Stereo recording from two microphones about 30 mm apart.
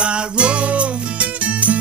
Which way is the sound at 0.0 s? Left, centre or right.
Right.